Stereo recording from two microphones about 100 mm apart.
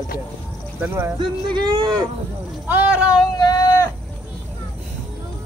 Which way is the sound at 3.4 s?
40° left (ahead or behind).